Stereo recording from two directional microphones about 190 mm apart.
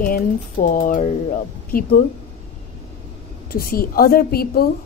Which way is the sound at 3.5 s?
50° left (ahead or behind).